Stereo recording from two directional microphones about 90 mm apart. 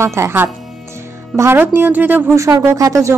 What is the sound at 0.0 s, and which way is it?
A woman's voice, 30° right (ahead or behind).